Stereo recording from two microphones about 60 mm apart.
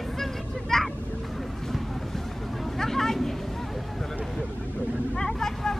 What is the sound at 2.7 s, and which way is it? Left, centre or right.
Vehicle, centre.